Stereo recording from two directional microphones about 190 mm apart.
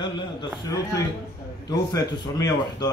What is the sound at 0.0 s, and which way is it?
A man's voice, 20° left (ahead or behind).